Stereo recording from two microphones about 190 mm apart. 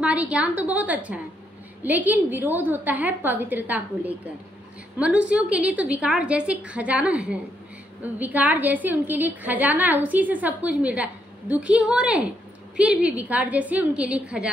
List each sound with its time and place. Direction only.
0.0 s a woman's voice: 5° right (ahead or behind)